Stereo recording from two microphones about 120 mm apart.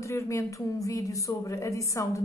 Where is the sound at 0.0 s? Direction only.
25° left (ahead or behind).